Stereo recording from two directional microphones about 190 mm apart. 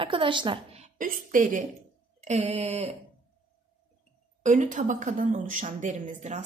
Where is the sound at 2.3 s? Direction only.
35° right (ahead or behind).